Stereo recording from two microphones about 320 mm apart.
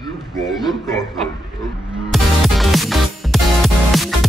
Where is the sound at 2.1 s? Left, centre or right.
Centre.